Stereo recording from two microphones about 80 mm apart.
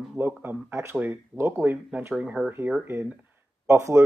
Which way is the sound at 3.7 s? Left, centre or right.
Right.